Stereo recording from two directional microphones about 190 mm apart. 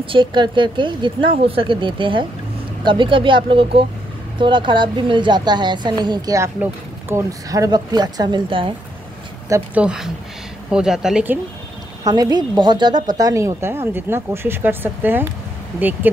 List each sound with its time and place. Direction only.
0.0 s a woman's voice: 25° right (ahead or behind)
9.5 s speech: 5° right (ahead or behind)
12.0 s a woman's voice: 20° right (ahead or behind)